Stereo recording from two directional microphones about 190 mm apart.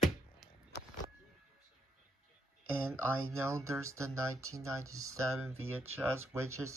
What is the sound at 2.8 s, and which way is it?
Speech, 10° right (ahead or behind).